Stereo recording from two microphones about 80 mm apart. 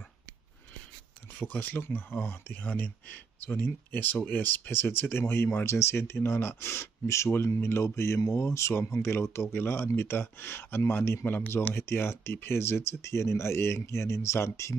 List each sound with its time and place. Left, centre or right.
1.4 s speech: left